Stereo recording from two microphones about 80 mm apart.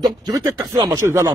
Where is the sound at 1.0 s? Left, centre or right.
Right.